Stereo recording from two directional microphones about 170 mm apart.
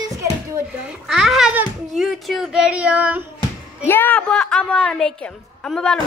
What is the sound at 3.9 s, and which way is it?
A woman's voice, 10° left (ahead or behind).